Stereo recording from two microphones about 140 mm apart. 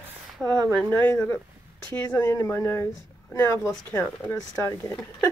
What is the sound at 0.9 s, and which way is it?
Speech, 15° left (ahead or behind).